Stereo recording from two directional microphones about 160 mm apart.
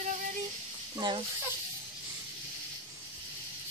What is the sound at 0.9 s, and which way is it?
Speech, 30° right (ahead or behind).